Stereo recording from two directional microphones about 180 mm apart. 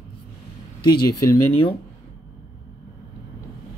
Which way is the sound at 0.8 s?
20° left (ahead or behind).